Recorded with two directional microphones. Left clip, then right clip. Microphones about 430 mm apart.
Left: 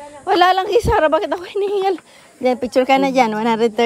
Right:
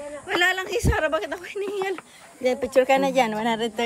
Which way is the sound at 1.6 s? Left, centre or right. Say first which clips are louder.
Left 10 dB; left.